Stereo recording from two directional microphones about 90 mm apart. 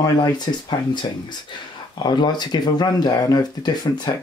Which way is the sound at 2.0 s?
55° left (ahead or behind).